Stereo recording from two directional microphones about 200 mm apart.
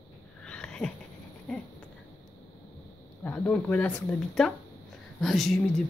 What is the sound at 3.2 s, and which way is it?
Speech, 5° left (ahead or behind).